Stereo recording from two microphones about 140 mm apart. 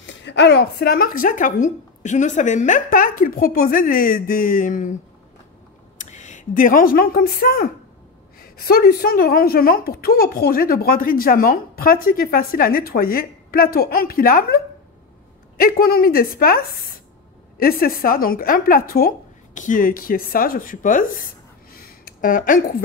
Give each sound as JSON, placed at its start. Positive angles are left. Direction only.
{"t": 0.8, "sound": "a woman's voice", "side_deg": 90}
{"t": 5.9, "sound": "a woman's voice", "side_deg": 60}
{"t": 15.6, "sound": "a woman's voice", "side_deg": 90}
{"t": 21.7, "sound": "a sound", "side_deg": 90}